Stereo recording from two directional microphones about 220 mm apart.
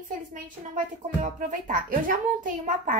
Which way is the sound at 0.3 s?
35° right (ahead or behind).